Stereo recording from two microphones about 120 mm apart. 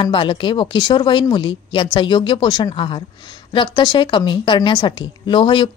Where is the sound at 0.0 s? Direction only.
45° left (ahead or behind).